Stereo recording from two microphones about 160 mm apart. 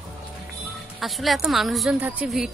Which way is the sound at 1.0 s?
Centre (ahead or behind).